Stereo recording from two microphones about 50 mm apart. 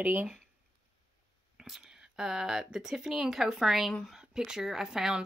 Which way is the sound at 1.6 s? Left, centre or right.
Centre.